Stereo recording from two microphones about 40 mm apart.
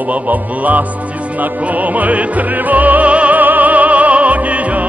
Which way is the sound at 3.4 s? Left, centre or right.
Right.